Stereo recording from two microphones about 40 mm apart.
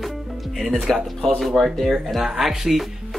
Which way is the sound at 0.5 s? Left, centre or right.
Centre.